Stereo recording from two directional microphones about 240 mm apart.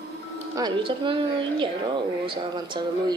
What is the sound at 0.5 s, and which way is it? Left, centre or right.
Speech, centre.